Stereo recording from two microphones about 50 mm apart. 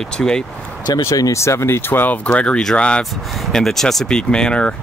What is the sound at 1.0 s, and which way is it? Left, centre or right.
Speech, left.